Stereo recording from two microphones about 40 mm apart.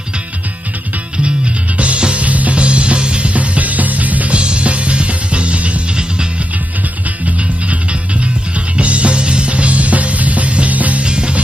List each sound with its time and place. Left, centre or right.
1.8 s music: right
4.4 s music: right
7.2 s music: right
11.1 s music: right